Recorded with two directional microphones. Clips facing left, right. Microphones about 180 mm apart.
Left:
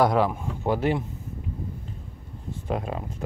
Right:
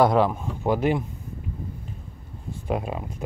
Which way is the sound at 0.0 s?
25° right (ahead or behind).